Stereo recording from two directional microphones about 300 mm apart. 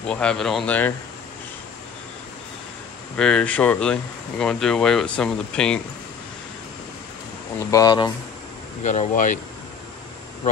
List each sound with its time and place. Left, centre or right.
0.1 s speech: centre
3.2 s speech: centre
7.7 s speech: centre